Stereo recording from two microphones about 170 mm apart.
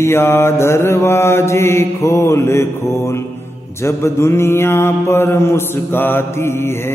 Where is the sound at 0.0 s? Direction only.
15° left (ahead or behind).